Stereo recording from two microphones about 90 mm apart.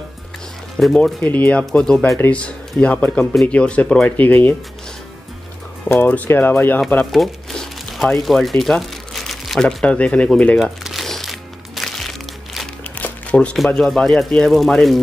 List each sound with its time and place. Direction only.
0.8 s speech: centre (ahead or behind)
1.2 s speech: 15° left (ahead or behind)
5.9 s speech: 20° left (ahead or behind)
7.1 s speech: centre (ahead or behind)
10.6 s music: 5° right (ahead or behind)
13.0 s crumpling: 15° left (ahead or behind)
13.7 s speech: 5° left (ahead or behind)